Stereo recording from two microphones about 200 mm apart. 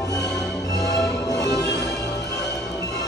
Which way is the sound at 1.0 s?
5° left (ahead or behind).